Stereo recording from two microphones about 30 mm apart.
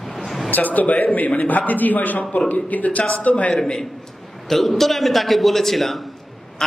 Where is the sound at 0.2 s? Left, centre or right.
Centre.